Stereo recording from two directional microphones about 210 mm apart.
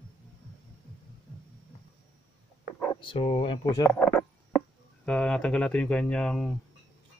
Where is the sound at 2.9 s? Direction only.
25° left (ahead or behind).